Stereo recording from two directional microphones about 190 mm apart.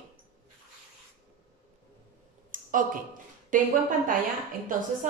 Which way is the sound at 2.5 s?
45° right (ahead or behind).